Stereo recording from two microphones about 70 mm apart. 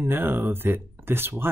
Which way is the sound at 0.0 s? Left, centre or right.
Right.